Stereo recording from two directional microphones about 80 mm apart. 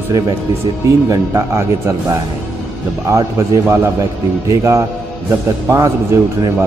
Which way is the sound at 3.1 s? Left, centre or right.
Right.